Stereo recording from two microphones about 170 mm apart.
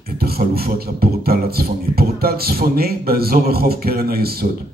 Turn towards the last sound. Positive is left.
turn(degrees=-65)  # may be behind; listen again after turning